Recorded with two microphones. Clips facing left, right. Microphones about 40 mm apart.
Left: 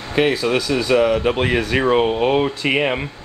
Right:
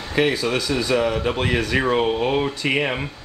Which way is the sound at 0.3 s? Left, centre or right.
Left.